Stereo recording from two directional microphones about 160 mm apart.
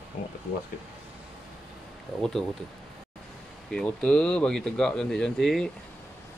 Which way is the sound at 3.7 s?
5° left (ahead or behind).